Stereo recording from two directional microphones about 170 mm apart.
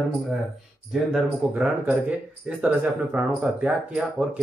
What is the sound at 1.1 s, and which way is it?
Speech, 5° right (ahead or behind).